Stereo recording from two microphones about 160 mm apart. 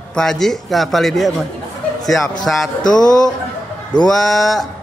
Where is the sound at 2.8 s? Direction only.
25° left (ahead or behind).